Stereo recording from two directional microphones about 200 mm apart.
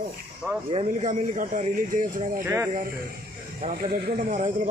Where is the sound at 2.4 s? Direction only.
15° right (ahead or behind).